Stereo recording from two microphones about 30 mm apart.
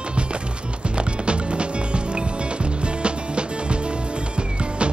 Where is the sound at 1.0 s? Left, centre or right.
Right.